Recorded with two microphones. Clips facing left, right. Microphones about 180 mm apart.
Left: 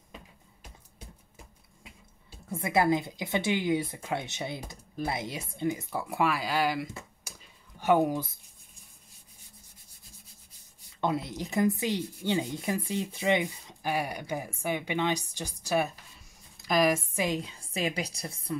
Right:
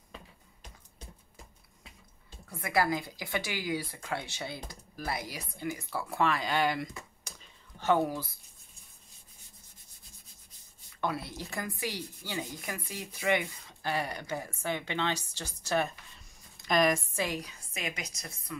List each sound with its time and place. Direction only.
0.1 s music: 10° left (ahead or behind)
2.5 s speech: 25° left (ahead or behind); by 6.9 s 5° left (ahead or behind)
7.3 s a sound: 10° left (ahead or behind)
7.8 s speech: 15° left (ahead or behind)
11.0 s speech: 20° left (ahead or behind); by 17.0 s 5° left (ahead or behind)
17.1 s a woman's voice: 20° left (ahead or behind)